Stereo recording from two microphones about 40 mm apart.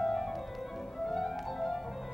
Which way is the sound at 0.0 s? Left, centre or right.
Centre.